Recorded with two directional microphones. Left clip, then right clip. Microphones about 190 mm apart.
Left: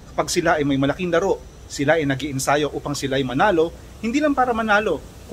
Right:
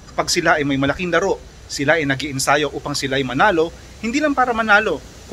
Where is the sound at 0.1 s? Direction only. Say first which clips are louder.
Right 3 dB; centre (ahead or behind).